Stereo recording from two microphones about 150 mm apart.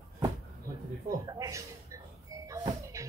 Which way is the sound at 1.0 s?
25° right (ahead or behind).